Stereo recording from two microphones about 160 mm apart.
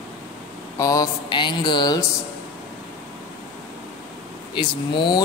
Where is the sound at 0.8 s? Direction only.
20° left (ahead or behind).